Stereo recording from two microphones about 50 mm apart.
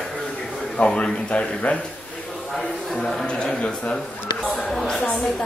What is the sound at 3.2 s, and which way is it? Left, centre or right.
A man's voice, centre.